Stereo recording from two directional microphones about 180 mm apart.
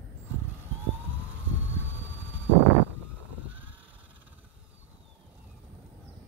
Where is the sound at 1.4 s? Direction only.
90° right.